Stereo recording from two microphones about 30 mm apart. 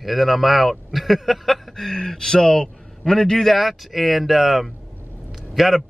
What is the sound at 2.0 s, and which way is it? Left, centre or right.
Speech, left.